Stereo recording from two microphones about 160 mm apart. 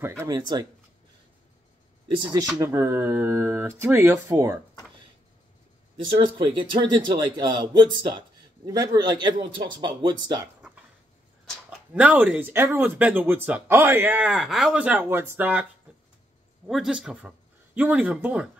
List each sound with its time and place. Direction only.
0.2 s a man's voice: 25° right (ahead or behind)
2.1 s a man's voice: 30° right (ahead or behind)
6.1 s a man's voice: 35° right (ahead or behind)
11.9 s speech: 10° right (ahead or behind)
16.6 s speech: centre (ahead or behind)